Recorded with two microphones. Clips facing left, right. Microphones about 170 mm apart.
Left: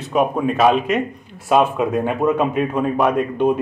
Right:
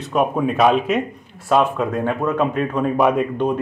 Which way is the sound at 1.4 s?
10° left (ahead or behind).